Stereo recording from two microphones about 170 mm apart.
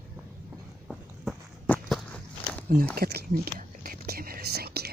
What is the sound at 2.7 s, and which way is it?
Whispering, 60° right (ahead or behind).